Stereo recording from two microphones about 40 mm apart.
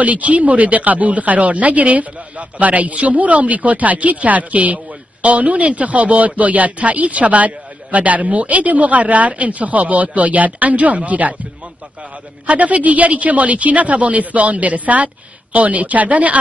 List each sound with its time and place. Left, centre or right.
0.0 s speech: right
12.4 s speech: right